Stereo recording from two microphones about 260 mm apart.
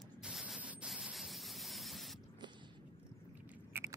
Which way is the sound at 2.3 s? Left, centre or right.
Centre.